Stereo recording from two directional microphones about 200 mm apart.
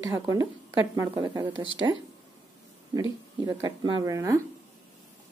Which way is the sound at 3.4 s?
20° right (ahead or behind).